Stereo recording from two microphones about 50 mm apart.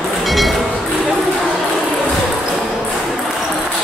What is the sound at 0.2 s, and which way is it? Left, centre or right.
Music, centre.